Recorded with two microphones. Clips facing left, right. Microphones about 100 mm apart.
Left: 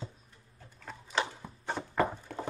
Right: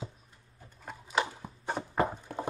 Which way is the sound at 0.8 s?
15° right (ahead or behind).